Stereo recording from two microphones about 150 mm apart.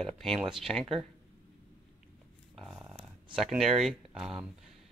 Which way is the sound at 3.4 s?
Centre (ahead or behind).